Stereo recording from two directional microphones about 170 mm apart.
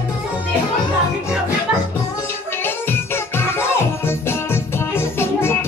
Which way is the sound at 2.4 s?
15° left (ahead or behind).